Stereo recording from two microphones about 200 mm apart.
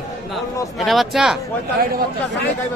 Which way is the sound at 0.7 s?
Centre (ahead or behind).